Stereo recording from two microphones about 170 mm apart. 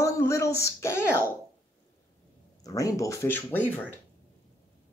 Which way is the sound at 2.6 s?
20° left (ahead or behind).